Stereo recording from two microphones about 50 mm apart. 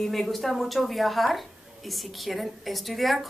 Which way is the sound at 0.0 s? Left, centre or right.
Centre.